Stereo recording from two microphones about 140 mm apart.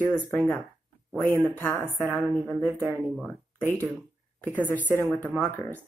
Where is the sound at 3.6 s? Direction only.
20° right (ahead or behind).